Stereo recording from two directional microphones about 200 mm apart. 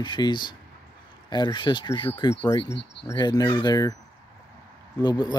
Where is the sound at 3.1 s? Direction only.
20° left (ahead or behind).